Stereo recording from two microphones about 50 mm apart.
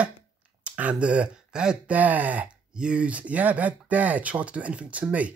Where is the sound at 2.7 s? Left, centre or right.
Centre.